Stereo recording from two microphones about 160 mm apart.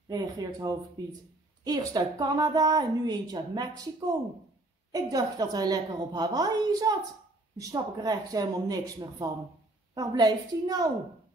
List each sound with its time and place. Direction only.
0.1 s a woman's voice: 25° right (ahead or behind)
4.9 s a woman's voice: 25° right (ahead or behind)